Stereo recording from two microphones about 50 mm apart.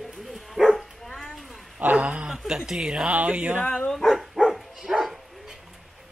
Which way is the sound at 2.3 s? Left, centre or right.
Centre.